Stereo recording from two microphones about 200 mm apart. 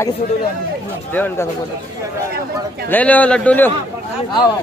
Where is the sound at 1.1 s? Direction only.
10° left (ahead or behind).